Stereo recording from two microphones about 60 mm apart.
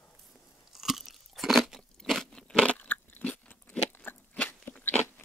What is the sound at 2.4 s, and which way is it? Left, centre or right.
Biting, left.